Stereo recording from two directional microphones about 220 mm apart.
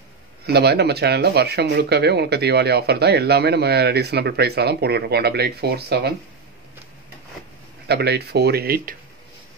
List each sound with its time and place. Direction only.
0.5 s speech: 50° right (ahead or behind)
7.9 s speech: 50° right (ahead or behind)